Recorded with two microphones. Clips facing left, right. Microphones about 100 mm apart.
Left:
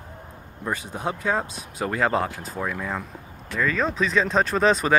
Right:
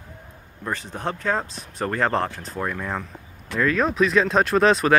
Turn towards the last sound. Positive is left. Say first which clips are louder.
# right 3 dB
turn(degrees=0)  # may be behind; listen again after turning